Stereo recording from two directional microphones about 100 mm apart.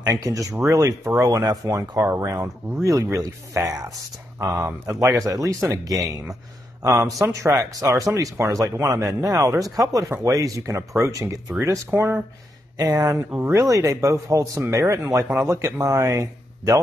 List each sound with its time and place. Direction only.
0.0 s speech: 35° right (ahead or behind)
12.7 s speech: 35° right (ahead or behind)
13.3 s speech: 20° right (ahead or behind)